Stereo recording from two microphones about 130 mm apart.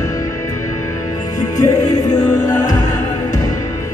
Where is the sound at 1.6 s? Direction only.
30° left (ahead or behind).